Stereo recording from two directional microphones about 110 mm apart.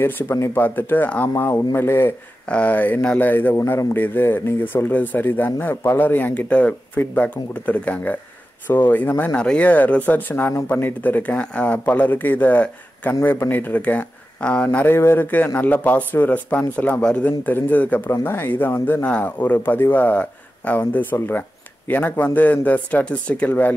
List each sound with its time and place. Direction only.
0.0 s speech: 20° left (ahead or behind)